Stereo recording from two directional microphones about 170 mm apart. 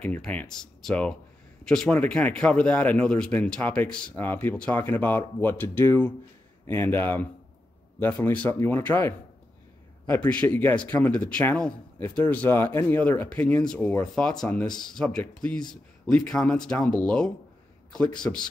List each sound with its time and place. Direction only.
0.0 s a man's voice: 10° left (ahead or behind)